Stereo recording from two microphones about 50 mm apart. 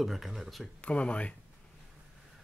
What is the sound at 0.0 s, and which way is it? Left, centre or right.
Speech, centre.